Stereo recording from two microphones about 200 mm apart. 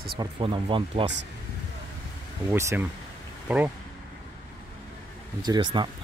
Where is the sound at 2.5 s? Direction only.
15° right (ahead or behind).